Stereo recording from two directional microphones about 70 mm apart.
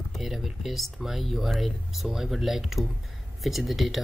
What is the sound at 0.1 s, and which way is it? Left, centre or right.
Speech, centre.